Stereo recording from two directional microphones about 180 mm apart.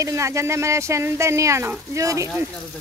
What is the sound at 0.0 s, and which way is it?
Speech, 15° right (ahead or behind).